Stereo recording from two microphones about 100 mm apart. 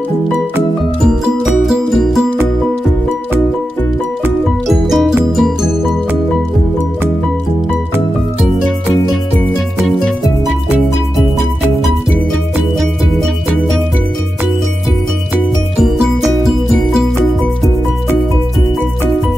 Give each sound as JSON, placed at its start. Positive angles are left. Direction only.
{"t": 1.0, "sound": "music", "side_deg": -5}
{"t": 4.6, "sound": "music", "side_deg": 0}
{"t": 9.8, "sound": "music", "side_deg": 0}